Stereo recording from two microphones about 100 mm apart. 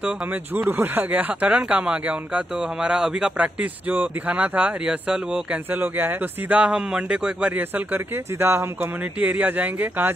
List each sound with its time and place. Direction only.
0.6 s speech: 20° right (ahead or behind)